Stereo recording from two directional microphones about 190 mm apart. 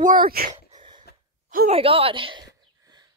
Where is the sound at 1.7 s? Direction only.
30° right (ahead or behind).